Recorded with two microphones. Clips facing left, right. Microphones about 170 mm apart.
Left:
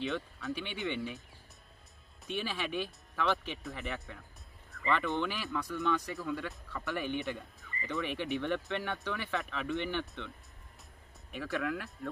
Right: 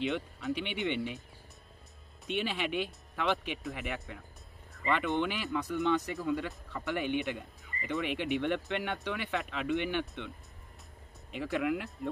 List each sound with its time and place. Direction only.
0.0 s speech: 20° right (ahead or behind)
2.2 s speech: 20° right (ahead or behind)
11.3 s speech: 20° right (ahead or behind)